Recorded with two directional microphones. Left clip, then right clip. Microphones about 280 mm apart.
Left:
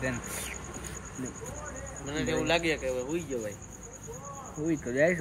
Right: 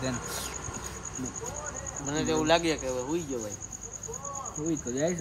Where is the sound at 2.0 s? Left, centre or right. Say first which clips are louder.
Right 3 dB; right.